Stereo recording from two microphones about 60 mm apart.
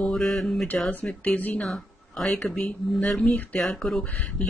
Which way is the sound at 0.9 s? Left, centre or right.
Left.